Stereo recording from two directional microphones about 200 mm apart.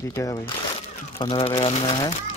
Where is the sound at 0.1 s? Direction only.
15° left (ahead or behind).